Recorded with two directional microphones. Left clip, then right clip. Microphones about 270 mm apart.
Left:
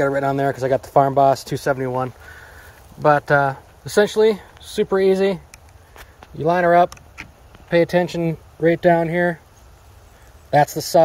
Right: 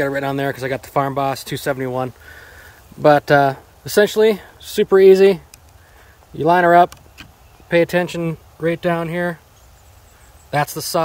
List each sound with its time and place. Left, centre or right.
0.0 s speech: right
3.3 s speech: right; by 9.4 s centre
10.5 s speech: centre